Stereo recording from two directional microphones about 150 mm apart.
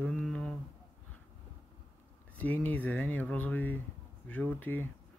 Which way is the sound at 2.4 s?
10° left (ahead or behind).